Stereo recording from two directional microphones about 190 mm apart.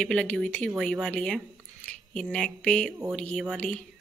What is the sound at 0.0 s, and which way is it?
Speech, 5° left (ahead or behind).